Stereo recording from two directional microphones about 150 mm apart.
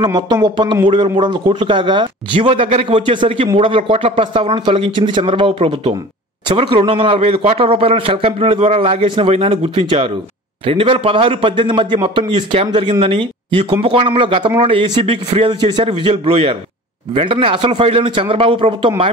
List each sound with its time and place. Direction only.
0.0 s a man's voice: 30° right (ahead or behind)